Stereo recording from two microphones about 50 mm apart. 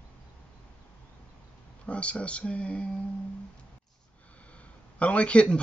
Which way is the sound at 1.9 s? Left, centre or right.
Left.